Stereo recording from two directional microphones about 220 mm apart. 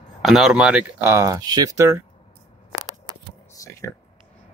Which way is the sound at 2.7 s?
15° right (ahead or behind).